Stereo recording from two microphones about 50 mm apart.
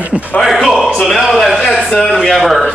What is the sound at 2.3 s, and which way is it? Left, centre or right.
Speech, centre.